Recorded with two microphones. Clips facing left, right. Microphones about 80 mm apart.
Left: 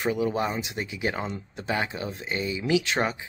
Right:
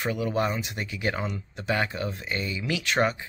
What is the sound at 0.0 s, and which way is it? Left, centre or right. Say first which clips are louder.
Speech: left 1 dB; centre.